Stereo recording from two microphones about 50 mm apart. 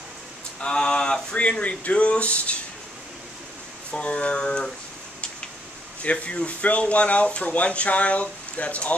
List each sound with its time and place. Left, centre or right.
0.6 s speech: centre
3.9 s speech: left
6.0 s speech: left